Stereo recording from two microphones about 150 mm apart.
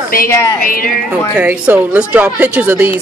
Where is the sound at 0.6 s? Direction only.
70° left (ahead or behind).